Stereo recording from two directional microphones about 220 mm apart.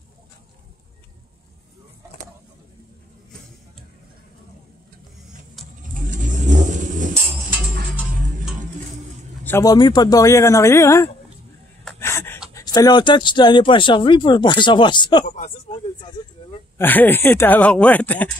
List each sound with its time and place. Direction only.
5.6 s vehicle: centre (ahead or behind)
6.1 s vehicle: 35° right (ahead or behind)
9.4 s speech: 10° left (ahead or behind)
11.8 s a sound: 10° left (ahead or behind)
12.5 s speech: 15° left (ahead or behind)
15.2 s speech: 35° left (ahead or behind)
16.2 s speech: 20° left (ahead or behind)
16.7 s speech: 10° left (ahead or behind)